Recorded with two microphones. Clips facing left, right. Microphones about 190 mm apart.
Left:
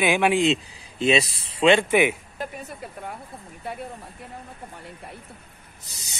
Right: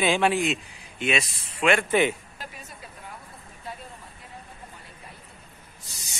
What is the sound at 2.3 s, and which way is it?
Speech, 55° left (ahead or behind).